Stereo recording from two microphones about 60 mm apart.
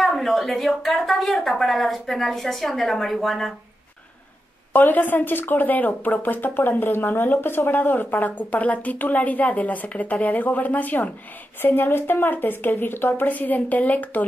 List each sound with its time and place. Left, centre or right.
0.0 s speech: centre
4.7 s a woman's voice: left